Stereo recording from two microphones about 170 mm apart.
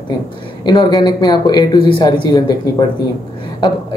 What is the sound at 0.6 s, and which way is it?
Speech, 25° left (ahead or behind).